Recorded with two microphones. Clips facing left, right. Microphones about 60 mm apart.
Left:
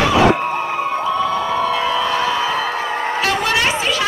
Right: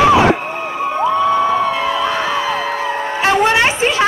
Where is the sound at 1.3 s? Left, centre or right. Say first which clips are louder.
Right 3 dB; right.